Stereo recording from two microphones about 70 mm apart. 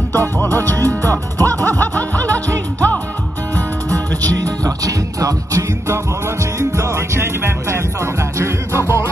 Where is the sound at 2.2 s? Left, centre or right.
Right.